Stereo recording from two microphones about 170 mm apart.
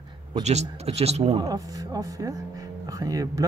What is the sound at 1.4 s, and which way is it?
A man's voice, 20° right (ahead or behind).